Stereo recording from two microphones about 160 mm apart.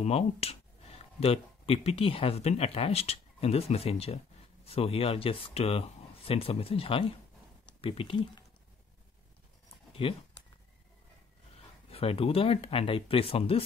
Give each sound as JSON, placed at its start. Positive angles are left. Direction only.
{"t": 0.0, "sound": "speech", "side_deg": 40}
{"t": 10.0, "sound": "speech", "side_deg": 35}
{"t": 11.9, "sound": "speech", "side_deg": 35}